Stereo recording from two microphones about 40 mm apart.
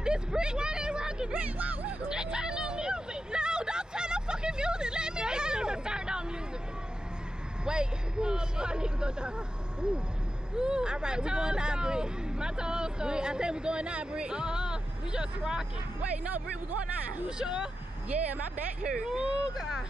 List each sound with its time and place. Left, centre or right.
0.0 s a sound: right
1.3 s speech: right
2.2 s hubbub: right
7.6 s speech: right
17.4 s speech: right
18.1 s speech: right
18.9 s speech: centre